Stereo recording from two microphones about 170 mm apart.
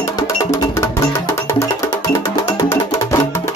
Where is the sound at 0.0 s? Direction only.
20° left (ahead or behind).